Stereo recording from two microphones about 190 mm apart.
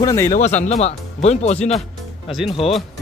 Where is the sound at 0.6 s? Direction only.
35° left (ahead or behind).